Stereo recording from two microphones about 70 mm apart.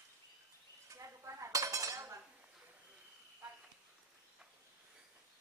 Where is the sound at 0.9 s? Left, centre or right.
Right.